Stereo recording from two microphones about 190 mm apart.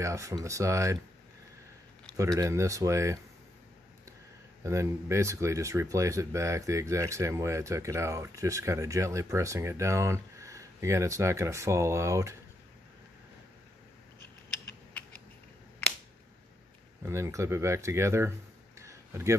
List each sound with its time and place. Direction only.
0.0 s speech: 15° right (ahead or behind)
2.1 s speech: 15° right (ahead or behind)
4.6 s speech: 15° right (ahead or behind)
15.0 s mechanisms: 10° left (ahead or behind)
17.0 s speech: 15° right (ahead or behind)
18.8 s a sound: 15° right (ahead or behind)